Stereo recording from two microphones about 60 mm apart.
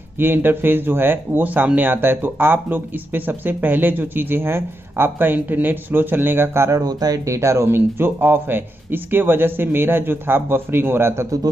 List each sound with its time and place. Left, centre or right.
0.2 s speech: right
6.7 s speech: right
7.3 s speech: right